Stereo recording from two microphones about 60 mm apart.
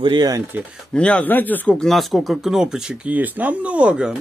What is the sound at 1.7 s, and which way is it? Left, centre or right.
Speech, centre.